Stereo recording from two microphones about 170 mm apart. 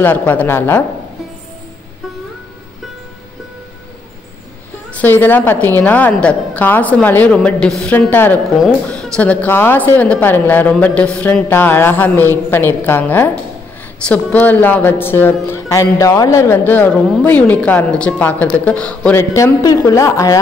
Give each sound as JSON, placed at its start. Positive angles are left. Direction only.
{"t": 0.0, "sound": "speech", "side_deg": 10}
{"t": 4.9, "sound": "speech", "side_deg": 10}
{"t": 19.3, "sound": "a woman's voice", "side_deg": 20}